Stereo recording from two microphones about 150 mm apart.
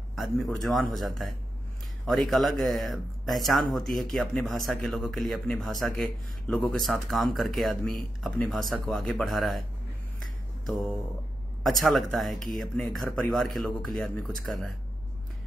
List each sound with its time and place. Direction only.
0.1 s speech: centre (ahead or behind)
11.6 s speech: centre (ahead or behind)